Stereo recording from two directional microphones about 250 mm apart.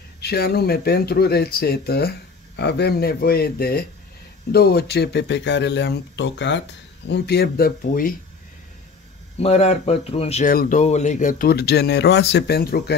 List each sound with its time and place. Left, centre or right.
0.2 s speech: left
9.4 s speech: left